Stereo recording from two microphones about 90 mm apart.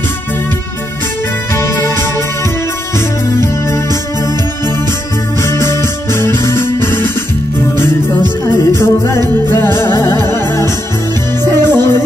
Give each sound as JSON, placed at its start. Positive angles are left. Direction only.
{"t": 1.6, "sound": "music", "side_deg": 30}
{"t": 5.4, "sound": "music", "side_deg": 30}
{"t": 8.7, "sound": "music", "side_deg": 30}